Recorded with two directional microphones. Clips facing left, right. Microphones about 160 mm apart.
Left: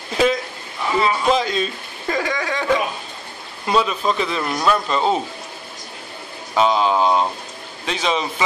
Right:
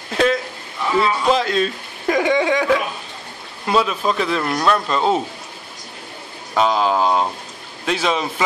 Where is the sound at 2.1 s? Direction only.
20° right (ahead or behind).